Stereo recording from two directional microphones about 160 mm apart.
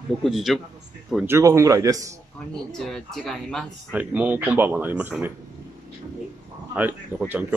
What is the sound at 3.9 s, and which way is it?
Speech, 10° right (ahead or behind).